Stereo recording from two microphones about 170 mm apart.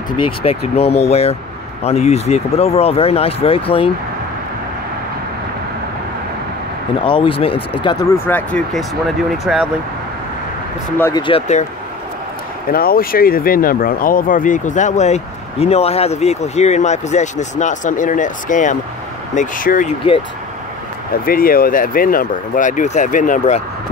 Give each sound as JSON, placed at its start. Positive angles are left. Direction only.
{"t": 0.4, "sound": "speech", "side_deg": 35}
{"t": 7.1, "sound": "speech", "side_deg": 30}
{"t": 8.3, "sound": "speech", "side_deg": 10}
{"t": 11.0, "sound": "speech", "side_deg": 15}
{"t": 11.2, "sound": "speech", "side_deg": 40}
{"t": 12.7, "sound": "speech", "side_deg": 60}
{"t": 21.3, "sound": "speech", "side_deg": 60}